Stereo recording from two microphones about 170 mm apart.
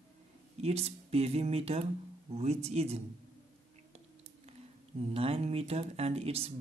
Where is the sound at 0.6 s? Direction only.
40° right (ahead or behind).